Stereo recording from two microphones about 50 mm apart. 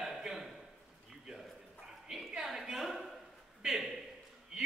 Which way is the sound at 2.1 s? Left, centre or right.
Centre.